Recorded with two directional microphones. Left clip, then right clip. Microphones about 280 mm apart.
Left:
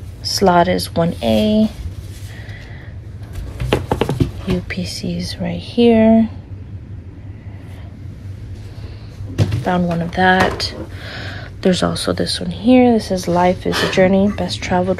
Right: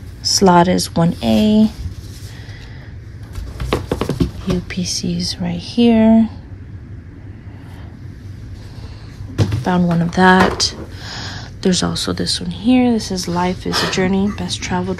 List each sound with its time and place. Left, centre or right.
0.2 s speech: centre
3.7 s a sound: centre
5.6 s speech: centre
9.7 s speech: centre